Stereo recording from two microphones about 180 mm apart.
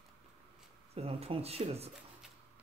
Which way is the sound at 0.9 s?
35° right (ahead or behind).